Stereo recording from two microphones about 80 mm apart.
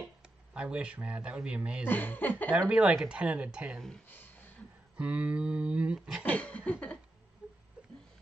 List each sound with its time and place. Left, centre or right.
0.6 s speech: centre
1.9 s speech: left
2.7 s speech: centre
4.1 s a sound: left
4.9 s speech: centre
6.2 s a sound: centre
7.4 s wheeze: centre